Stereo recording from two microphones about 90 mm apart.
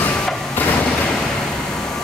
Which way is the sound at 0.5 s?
20° left (ahead or behind).